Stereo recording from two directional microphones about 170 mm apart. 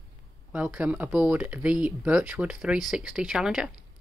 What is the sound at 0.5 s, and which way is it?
Speech, 5° right (ahead or behind).